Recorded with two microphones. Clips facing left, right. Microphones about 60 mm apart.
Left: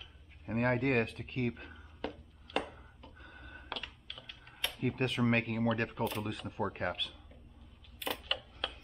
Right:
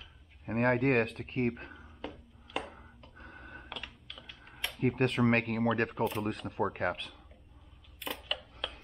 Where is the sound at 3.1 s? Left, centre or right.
Right.